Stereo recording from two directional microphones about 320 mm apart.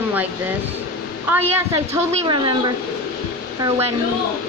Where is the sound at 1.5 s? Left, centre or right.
Centre.